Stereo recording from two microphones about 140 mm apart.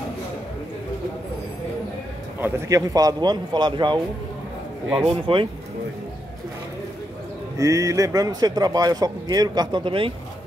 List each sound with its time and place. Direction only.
2.4 s speech: 25° right (ahead or behind)
5.0 s speech: 40° right (ahead or behind)
7.5 s speech: 25° right (ahead or behind)